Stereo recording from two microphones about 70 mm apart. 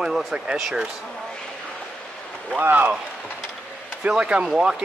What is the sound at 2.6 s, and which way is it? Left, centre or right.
Speech, right.